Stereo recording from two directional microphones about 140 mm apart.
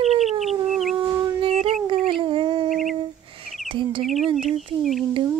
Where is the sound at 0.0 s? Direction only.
50° right (ahead or behind).